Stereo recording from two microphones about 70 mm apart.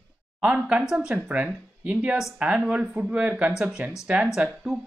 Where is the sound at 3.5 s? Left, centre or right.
Centre.